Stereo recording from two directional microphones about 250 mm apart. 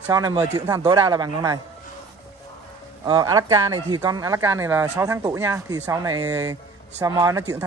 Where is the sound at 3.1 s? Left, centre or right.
Centre.